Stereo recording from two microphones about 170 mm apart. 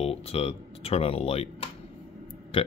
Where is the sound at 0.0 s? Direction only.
35° left (ahead or behind).